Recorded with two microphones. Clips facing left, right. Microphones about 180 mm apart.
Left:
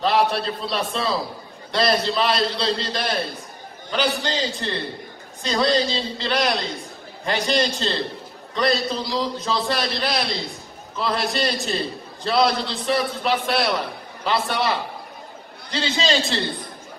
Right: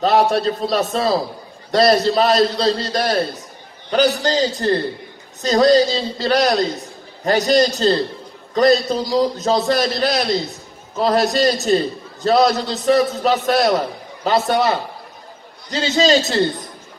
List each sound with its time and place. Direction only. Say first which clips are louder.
0.0 s a man's voice: right 5 dB; 45° right (ahead or behind)